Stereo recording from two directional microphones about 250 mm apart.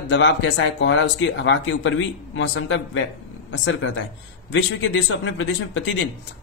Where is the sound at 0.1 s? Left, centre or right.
Left.